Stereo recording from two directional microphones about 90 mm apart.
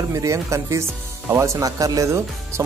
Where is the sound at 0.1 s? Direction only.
35° right (ahead or behind).